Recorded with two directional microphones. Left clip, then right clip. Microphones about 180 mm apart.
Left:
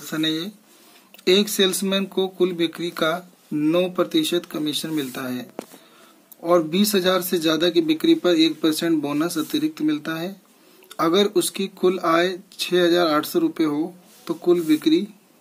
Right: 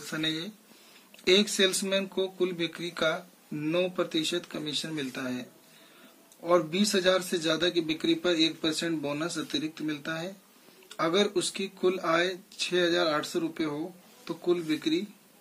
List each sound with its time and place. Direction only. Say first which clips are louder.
0.0 s speech: left 7 dB; 40° left (ahead or behind)